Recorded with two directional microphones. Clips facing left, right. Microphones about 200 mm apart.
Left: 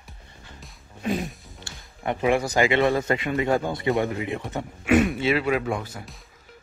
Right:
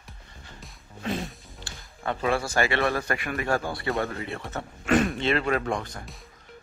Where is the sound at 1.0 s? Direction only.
15° left (ahead or behind).